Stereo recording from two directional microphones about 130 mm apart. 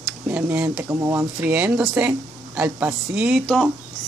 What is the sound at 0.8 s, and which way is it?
Speech, 20° right (ahead or behind).